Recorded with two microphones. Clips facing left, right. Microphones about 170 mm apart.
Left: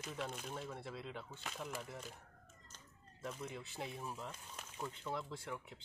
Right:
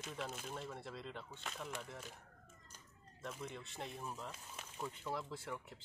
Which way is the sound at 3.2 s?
Centre (ahead or behind).